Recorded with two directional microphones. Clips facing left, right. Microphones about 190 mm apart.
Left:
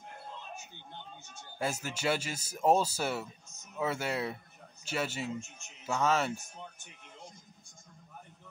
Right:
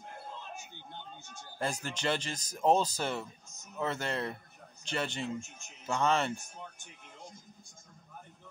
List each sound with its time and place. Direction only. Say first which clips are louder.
1.6 s speech: left 1 dB; 5° left (ahead or behind)